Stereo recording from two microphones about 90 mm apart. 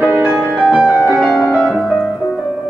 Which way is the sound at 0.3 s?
Centre (ahead or behind).